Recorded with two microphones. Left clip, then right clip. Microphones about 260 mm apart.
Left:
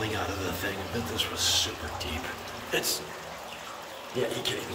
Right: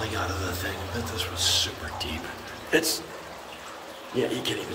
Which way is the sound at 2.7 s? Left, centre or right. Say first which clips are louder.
Right 5 dB; centre.